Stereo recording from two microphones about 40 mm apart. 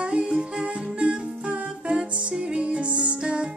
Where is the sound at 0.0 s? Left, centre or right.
Right.